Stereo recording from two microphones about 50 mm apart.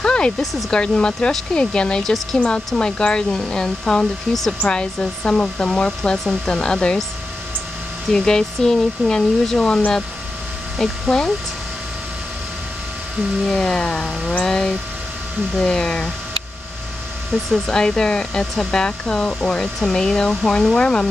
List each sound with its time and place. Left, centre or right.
0.0 s a sound: centre
0.4 s speech: centre
0.7 s speech: centre
8.1 s speech: centre
10.8 s speech: centre
13.5 s speech: centre
17.5 s speech: centre